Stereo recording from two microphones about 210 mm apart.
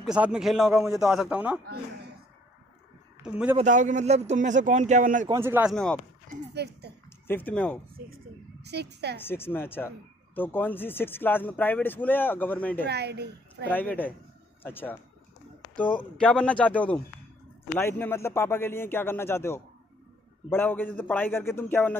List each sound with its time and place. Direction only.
0.0 s speech: 5° right (ahead or behind)
3.5 s speech: 35° right (ahead or behind)
5.3 s speech: 10° right (ahead or behind)
6.5 s a woman's voice: 50° right (ahead or behind)
7.2 s speech: 10° left (ahead or behind)
8.6 s a woman's voice: 50° right (ahead or behind)
9.2 s speech: 10° left (ahead or behind)
12.8 s a woman's voice: 50° right (ahead or behind)
13.7 s speech: 10° left (ahead or behind)